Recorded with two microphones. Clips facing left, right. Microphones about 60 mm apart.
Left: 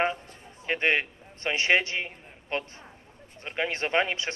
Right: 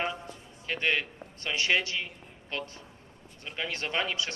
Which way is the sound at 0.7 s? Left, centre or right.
Left.